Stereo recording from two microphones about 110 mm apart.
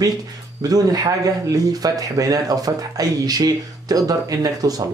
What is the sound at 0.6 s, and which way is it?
Speech, 35° right (ahead or behind).